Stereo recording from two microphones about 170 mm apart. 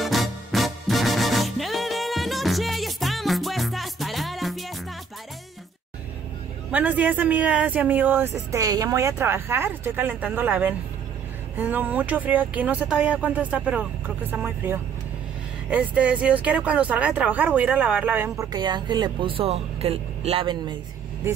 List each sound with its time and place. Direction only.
0.0 s music: centre (ahead or behind)
6.7 s speech: 10° right (ahead or behind)
18.5 s speech: 25° right (ahead or behind)